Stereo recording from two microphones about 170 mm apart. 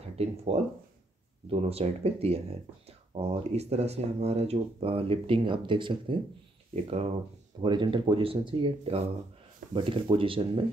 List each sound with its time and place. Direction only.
0.1 s speech: 40° right (ahead or behind)
7.6 s speech: 25° right (ahead or behind)